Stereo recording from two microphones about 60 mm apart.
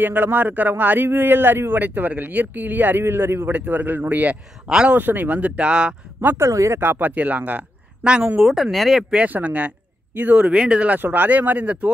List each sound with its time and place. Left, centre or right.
0.0 s a man's voice: right
4.6 s speech: centre
4.9 s a man's voice: right
5.6 s speech: centre
6.3 s speech: right
6.8 s a man's voice: right
8.2 s a man's voice: right
8.5 s speech: centre
9.1 s speech: right